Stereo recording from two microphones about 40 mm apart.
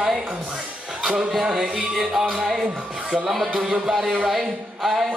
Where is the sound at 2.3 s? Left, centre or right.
Centre.